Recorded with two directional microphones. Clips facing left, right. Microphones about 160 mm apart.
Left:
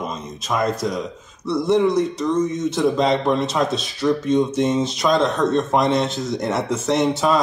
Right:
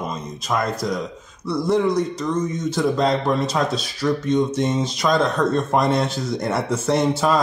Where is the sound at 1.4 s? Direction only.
25° left (ahead or behind).